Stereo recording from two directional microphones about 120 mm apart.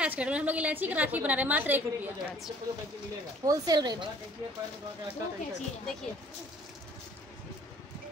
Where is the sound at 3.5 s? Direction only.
35° right (ahead or behind).